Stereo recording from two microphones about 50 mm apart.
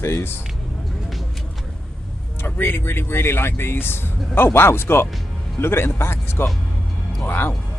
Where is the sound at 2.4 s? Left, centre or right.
Left.